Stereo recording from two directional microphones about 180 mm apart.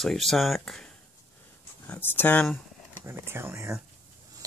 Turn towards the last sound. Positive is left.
turn(degrees=-15)  # may be behind; listen again after turning